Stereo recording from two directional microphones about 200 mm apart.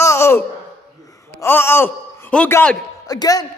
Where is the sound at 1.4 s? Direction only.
10° left (ahead or behind).